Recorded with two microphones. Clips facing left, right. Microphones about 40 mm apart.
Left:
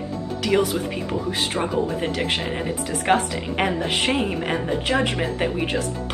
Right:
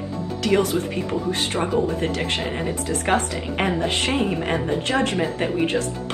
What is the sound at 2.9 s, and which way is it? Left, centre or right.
Speech, centre.